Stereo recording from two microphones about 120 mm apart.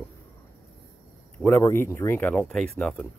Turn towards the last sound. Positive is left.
turn(degrees=5)  # may be behind; listen again after turning